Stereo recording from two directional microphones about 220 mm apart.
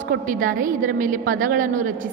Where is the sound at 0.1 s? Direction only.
40° right (ahead or behind).